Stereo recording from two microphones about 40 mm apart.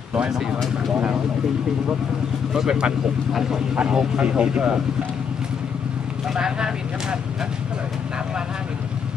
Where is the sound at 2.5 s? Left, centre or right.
Centre.